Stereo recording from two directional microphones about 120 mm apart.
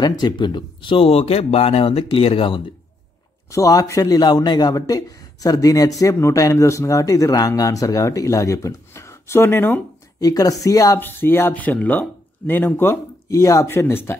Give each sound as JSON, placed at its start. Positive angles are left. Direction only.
{"t": 0.2, "sound": "speech", "side_deg": 40}
{"t": 3.5, "sound": "a man's voice", "side_deg": 25}
{"t": 10.2, "sound": "a man's voice", "side_deg": 30}